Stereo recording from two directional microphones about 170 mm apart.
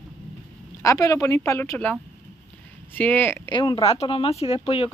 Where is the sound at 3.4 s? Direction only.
25° left (ahead or behind).